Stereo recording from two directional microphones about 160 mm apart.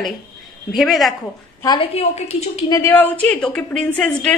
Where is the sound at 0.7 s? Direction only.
Centre (ahead or behind).